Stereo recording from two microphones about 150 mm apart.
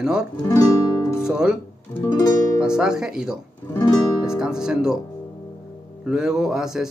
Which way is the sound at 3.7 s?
25° left (ahead or behind).